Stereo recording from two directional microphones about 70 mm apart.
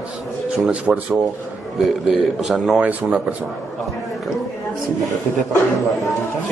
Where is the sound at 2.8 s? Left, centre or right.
Right.